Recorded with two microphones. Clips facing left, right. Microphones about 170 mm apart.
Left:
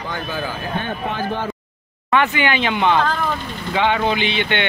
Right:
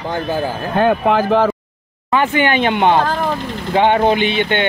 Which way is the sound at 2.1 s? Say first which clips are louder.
Right 3 dB; 45° right (ahead or behind).